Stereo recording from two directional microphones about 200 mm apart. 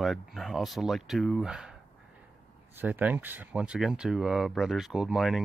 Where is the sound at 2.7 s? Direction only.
10° right (ahead or behind).